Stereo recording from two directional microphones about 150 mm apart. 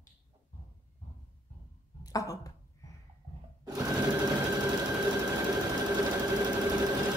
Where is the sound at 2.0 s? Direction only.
25° left (ahead or behind).